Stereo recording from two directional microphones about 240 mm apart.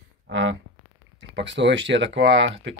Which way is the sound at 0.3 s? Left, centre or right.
Right.